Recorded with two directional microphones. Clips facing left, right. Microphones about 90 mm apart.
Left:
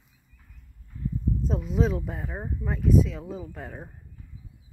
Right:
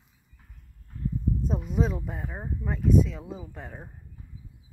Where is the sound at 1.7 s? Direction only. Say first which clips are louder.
Left 4 dB; centre (ahead or behind).